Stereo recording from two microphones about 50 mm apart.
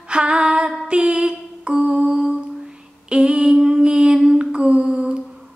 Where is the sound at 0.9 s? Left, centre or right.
Right.